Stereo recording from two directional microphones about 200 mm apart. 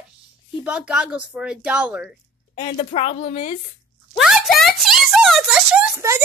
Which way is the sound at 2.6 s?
30° left (ahead or behind).